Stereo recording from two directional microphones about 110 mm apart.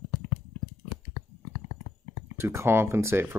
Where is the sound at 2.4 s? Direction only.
25° right (ahead or behind).